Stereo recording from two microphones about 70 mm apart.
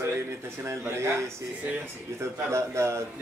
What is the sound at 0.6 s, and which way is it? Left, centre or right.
Speech, right.